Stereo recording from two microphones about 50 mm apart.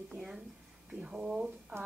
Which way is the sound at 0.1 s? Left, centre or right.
Centre.